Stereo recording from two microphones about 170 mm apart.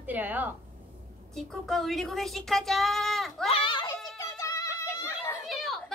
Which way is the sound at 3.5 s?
30° left (ahead or behind).